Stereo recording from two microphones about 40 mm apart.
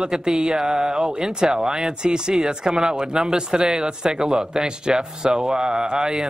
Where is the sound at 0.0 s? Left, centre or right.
Centre.